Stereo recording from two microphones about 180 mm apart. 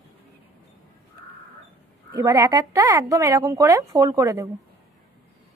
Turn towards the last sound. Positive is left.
turn(degrees=-20)  # may be behind; listen again after turning